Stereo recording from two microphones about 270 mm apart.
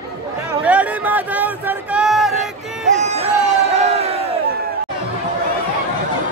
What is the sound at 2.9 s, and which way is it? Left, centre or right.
Music, right.